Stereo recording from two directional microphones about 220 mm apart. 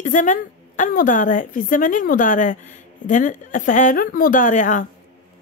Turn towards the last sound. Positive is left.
turn(degrees=35)  # may be behind; listen again after turning